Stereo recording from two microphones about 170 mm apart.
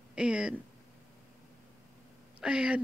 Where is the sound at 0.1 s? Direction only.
5° right (ahead or behind).